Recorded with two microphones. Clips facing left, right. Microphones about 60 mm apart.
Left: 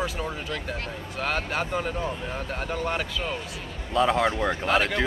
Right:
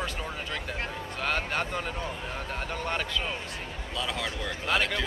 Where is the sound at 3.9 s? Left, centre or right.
Left.